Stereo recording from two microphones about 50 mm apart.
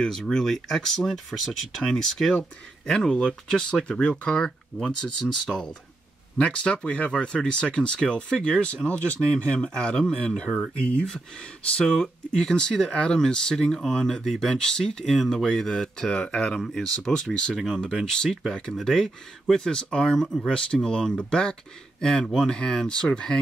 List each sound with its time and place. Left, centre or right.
0.0 s speech: centre
6.3 s speech: centre
12.0 s speech: centre